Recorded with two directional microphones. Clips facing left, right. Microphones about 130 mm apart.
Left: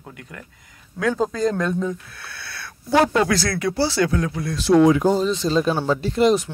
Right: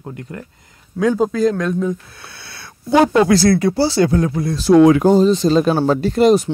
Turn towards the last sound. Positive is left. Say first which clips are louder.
# right 5 dB
turn(degrees=-45)  # may be behind; listen again after turning